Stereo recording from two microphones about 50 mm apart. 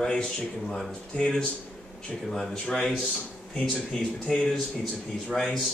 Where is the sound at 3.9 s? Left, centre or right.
Centre.